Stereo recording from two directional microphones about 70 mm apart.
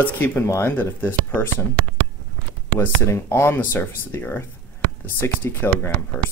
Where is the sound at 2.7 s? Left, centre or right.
Left.